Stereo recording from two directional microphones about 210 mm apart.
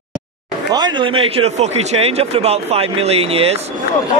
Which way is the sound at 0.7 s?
20° right (ahead or behind).